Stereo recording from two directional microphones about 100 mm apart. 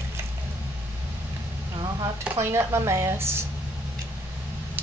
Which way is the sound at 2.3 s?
30° right (ahead or behind).